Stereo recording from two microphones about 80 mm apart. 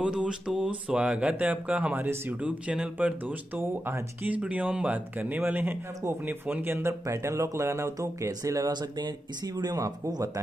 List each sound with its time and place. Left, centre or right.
0.0 s speech: centre
3.3 s speech: right
8.7 s speech: right